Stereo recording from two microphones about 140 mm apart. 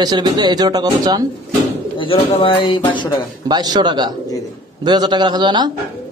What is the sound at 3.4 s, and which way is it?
A man's voice, 30° right (ahead or behind).